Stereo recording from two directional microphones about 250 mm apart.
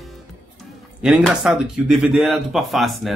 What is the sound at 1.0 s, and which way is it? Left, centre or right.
Speech, centre.